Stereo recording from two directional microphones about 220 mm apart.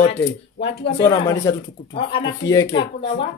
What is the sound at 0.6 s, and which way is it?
Speech, 25° left (ahead or behind).